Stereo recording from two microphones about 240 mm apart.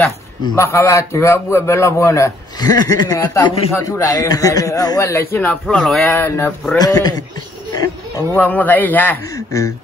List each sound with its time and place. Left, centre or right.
0.6 s a man's voice: centre
8.4 s a man's voice: centre